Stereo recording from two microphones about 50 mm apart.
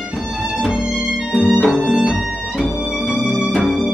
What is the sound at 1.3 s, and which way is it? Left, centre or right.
Music, centre.